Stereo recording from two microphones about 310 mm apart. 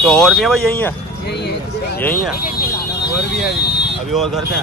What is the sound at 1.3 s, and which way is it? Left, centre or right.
Speech, left.